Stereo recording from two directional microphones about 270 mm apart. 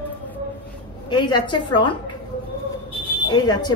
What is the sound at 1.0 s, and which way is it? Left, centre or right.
Speech, centre.